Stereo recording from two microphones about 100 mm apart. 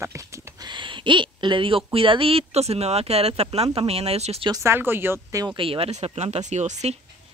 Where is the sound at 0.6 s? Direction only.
50° right (ahead or behind); by 4.5 s 90° right.